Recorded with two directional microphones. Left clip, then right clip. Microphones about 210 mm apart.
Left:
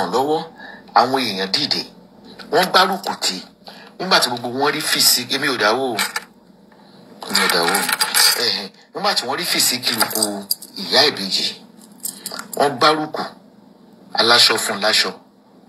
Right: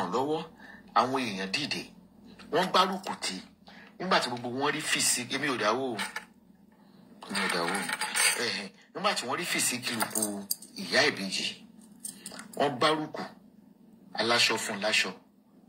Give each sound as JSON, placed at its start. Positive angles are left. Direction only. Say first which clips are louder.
{"t": 0.0, "sound": "speech", "louder": "left 11 dB", "side_deg": 50}
{"t": 7.2, "sound": "coin", "louder": "left 13 dB", "side_deg": 50}
{"t": 12.1, "sound": "speech", "louder": "left 15 dB", "side_deg": 50}
{"t": 14.1, "sound": "coin", "louder": "left 13 dB", "side_deg": 50}